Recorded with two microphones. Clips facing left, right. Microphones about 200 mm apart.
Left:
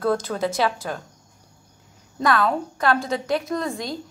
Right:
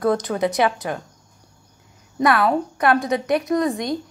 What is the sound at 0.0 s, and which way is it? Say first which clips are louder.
Speech: right 3 dB; 15° right (ahead or behind).